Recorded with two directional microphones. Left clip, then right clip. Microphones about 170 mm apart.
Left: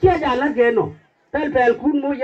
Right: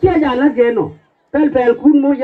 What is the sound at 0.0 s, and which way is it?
A woman's voice, centre (ahead or behind).